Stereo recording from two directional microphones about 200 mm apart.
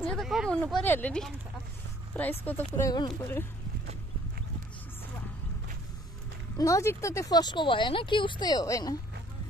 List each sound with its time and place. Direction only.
0.1 s speech: centre (ahead or behind); by 3.4 s 15° left (ahead or behind)
6.5 s speech: 15° left (ahead or behind)